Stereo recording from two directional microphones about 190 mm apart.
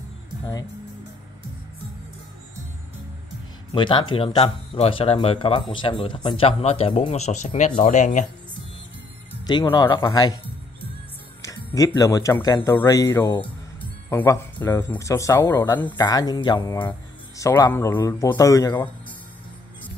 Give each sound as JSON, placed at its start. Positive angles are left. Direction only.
{"t": 3.7, "sound": "speech", "side_deg": 25}
{"t": 9.5, "sound": "speech", "side_deg": 20}